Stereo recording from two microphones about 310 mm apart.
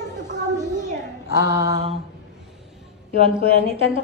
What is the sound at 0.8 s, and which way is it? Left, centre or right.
Speech, right.